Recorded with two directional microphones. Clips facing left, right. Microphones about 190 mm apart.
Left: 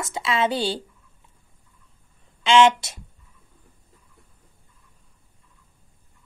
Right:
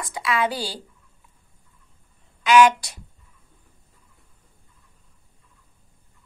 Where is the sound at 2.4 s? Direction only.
25° left (ahead or behind).